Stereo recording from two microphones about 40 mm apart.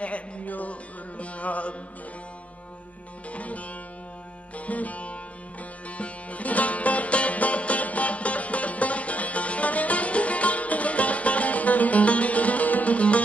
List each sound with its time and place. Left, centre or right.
0.0 s music: left
3.3 s music: left